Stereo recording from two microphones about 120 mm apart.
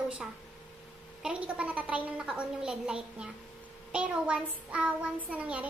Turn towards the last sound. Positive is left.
turn(degrees=-10)  # may be behind; listen again after turning